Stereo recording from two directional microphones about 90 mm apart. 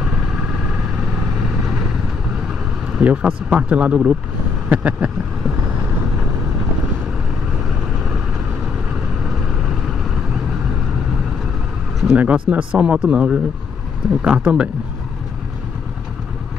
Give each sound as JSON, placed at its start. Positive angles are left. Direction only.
{"t": 2.9, "sound": "speech", "side_deg": -15}
{"t": 12.1, "sound": "speech", "side_deg": -15}